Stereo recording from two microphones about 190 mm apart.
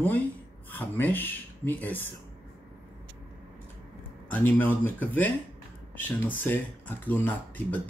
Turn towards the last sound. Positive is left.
turn(degrees=10)  # may be behind; listen again after turning